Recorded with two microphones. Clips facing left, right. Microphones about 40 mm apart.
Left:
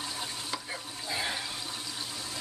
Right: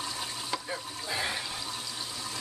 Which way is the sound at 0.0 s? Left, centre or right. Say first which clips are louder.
Right 1 dB; centre.